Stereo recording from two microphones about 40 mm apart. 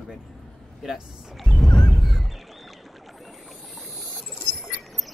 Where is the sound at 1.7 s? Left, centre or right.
Centre.